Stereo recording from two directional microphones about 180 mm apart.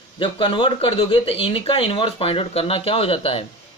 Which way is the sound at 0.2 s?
30° left (ahead or behind).